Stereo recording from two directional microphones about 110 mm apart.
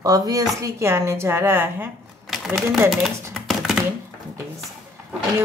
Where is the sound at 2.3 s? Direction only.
Centre (ahead or behind).